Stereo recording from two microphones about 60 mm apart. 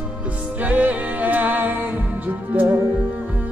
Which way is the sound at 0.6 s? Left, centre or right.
Right.